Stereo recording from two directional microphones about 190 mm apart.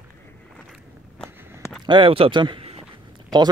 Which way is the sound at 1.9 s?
30° right (ahead or behind).